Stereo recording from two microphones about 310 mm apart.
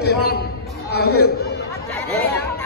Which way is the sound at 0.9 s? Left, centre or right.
Left.